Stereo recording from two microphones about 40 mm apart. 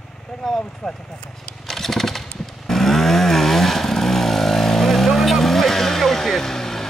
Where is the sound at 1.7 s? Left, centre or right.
Centre.